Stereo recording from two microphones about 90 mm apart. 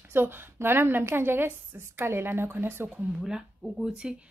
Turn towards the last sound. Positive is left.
turn(degrees=-10)  # may be behind; listen again after turning